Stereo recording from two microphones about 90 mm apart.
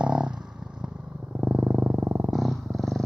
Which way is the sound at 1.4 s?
15° right (ahead or behind).